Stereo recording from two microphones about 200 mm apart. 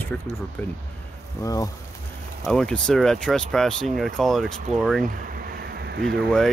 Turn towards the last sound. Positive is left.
turn(degrees=5)  # may be behind; listen again after turning